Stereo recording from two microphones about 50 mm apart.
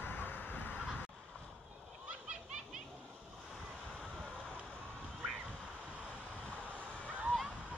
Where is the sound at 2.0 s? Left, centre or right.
Right.